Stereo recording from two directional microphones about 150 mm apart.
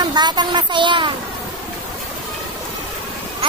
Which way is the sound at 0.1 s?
30° right (ahead or behind).